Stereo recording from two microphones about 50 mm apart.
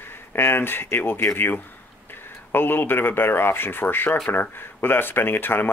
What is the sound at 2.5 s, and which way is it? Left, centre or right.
Speech, left.